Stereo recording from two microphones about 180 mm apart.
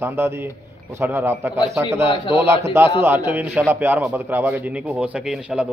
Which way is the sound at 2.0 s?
25° left (ahead or behind).